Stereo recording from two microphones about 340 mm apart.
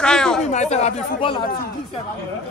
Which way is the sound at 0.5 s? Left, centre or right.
Centre.